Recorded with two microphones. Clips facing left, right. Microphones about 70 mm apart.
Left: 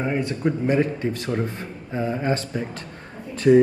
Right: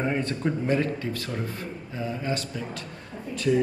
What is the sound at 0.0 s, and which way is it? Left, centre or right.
Speech, centre.